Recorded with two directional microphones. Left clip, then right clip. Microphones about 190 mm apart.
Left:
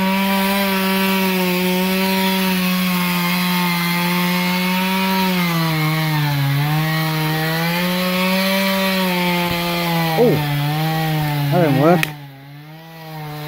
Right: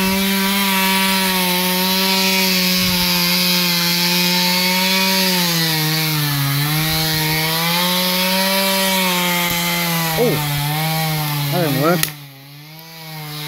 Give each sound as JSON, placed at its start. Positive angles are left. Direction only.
{"t": 0.0, "sound": "wood", "side_deg": 40}
{"t": 7.0, "sound": "rub", "side_deg": 45}
{"t": 11.5, "sound": "speech", "side_deg": 15}